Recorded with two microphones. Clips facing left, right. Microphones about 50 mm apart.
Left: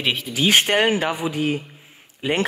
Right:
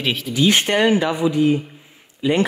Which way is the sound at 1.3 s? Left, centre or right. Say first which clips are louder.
Right 6 dB; left.